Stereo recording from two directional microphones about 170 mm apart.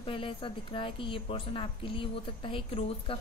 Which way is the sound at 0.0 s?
30° left (ahead or behind).